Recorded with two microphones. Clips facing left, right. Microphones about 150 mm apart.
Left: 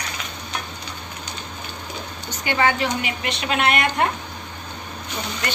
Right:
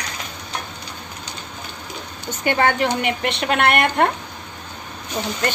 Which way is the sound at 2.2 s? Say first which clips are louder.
Right 2 dB; 50° right (ahead or behind).